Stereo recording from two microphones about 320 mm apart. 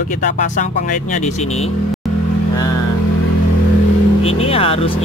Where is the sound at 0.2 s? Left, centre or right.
Left.